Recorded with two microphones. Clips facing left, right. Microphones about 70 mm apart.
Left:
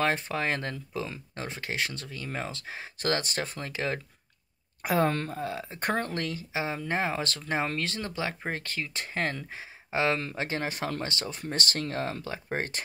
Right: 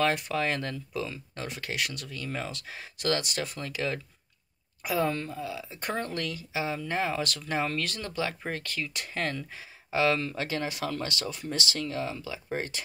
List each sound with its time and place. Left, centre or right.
0.0 s speech: left
4.8 s speech: left